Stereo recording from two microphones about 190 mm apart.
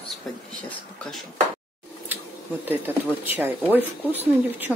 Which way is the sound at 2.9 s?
10° right (ahead or behind).